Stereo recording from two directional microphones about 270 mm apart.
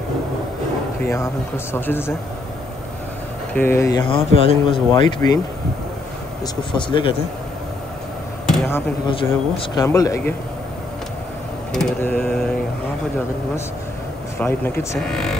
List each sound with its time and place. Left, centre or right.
1.0 s speech: centre
3.5 s speech: centre
6.4 s speech: centre
8.5 s speech: centre
9.1 s speech: centre
11.7 s a sound: centre
14.4 s speech: centre